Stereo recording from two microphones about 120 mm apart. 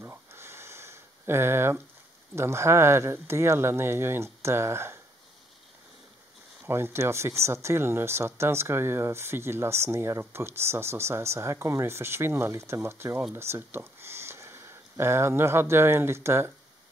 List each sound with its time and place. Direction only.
0.0 s a sound: 20° right (ahead or behind)
2.3 s speech: 20° right (ahead or behind)
6.6 s speech: 20° right (ahead or behind)